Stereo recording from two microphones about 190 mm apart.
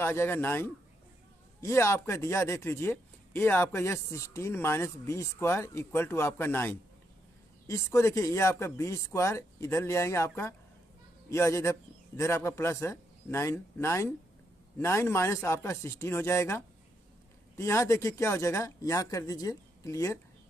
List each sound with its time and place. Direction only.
0.0 s speech: 15° left (ahead or behind)